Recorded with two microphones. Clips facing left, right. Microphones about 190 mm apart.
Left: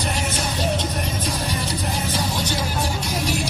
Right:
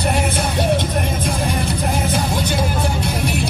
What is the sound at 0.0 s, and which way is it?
Music, 60° right (ahead or behind).